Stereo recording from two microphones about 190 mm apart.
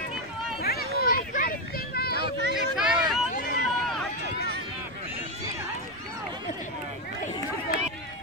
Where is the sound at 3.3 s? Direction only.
55° left (ahead or behind).